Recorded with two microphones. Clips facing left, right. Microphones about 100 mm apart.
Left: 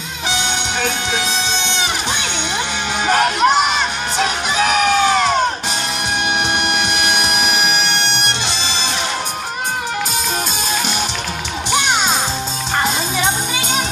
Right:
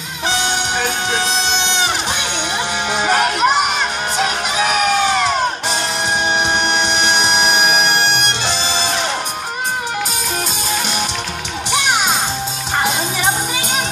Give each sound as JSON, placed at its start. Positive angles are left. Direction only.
{"t": 3.1, "sound": "crowd", "side_deg": -5}
{"t": 6.7, "sound": "music", "side_deg": -30}